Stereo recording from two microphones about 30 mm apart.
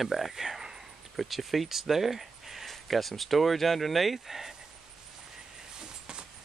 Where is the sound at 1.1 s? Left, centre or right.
Centre.